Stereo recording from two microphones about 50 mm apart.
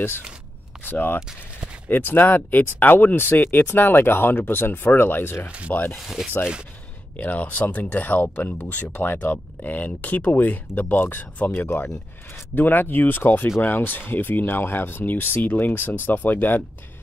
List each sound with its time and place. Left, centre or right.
0.8 s speech: left
1.2 s speech: right
1.9 s speech: left
5.9 s speech: centre
7.2 s speech: left